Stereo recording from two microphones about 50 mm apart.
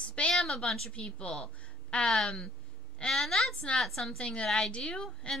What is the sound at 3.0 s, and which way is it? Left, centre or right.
A woman's voice, centre.